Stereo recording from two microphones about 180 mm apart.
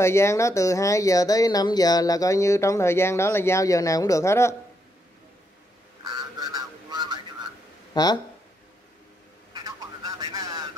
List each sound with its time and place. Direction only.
0.0 s speech: 15° left (ahead or behind)
6.0 s goose: 20° right (ahead or behind)
7.9 s speech: 20° left (ahead or behind)
9.5 s a sound: 20° right (ahead or behind)